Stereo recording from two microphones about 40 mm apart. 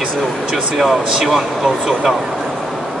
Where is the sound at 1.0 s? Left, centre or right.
Centre.